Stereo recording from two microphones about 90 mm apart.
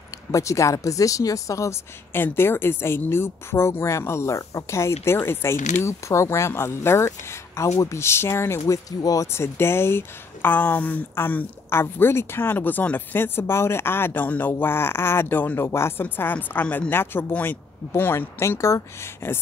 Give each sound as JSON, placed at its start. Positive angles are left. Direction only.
{"t": 0.3, "sound": "speech", "side_deg": 35}